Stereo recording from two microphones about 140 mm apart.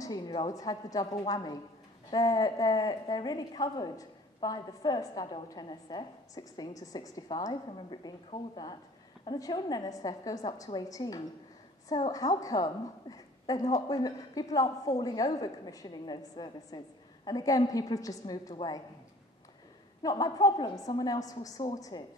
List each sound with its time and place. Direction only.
0.3 s a woman's voice: 30° left (ahead or behind)
20.0 s a woman's voice: 25° left (ahead or behind)